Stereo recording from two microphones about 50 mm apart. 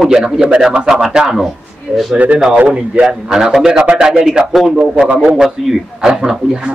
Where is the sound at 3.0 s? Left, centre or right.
Centre.